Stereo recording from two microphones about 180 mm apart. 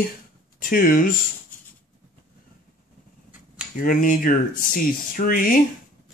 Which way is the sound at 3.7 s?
50° left (ahead or behind).